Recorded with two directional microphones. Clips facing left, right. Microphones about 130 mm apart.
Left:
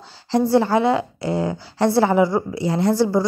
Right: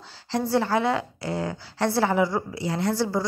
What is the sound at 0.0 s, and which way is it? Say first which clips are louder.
A woman's voice: left 8 dB; 20° left (ahead or behind).